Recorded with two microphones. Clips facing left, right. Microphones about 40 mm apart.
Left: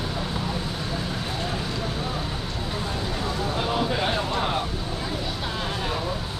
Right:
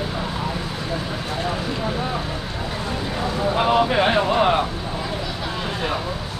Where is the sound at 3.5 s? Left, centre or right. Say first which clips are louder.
Right 9 dB; right.